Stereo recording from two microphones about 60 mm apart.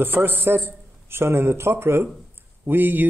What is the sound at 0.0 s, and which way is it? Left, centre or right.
A man's voice, right.